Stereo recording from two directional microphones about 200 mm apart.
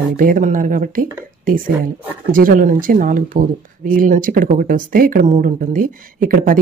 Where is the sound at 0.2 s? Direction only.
40° right (ahead or behind).